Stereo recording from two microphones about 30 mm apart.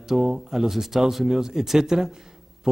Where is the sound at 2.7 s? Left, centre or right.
Right.